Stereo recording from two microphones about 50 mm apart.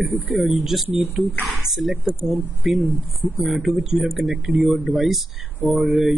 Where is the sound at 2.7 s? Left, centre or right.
Right.